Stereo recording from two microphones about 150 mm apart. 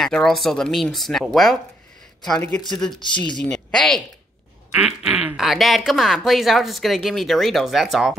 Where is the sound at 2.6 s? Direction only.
Centre (ahead or behind).